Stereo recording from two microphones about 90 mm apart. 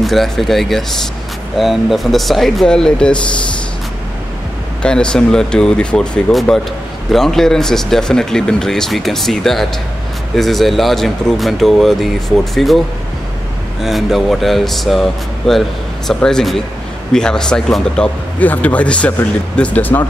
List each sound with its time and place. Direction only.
0.0 s speech: centre (ahead or behind)
4.8 s speech: 10° left (ahead or behind)
13.8 s speech: centre (ahead or behind); by 20.1 s 20° left (ahead or behind)